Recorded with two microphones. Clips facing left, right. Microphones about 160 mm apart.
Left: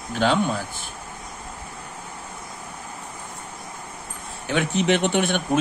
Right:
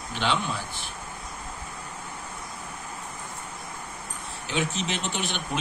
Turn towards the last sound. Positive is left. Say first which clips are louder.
# left 9 dB
turn(degrees=50)  # may be behind; listen again after turning